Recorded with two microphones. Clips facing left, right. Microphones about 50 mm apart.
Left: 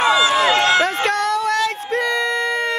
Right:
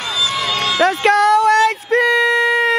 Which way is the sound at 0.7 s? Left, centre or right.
Centre.